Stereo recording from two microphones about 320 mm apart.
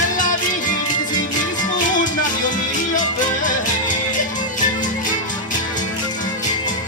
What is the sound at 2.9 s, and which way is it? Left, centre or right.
Music, left.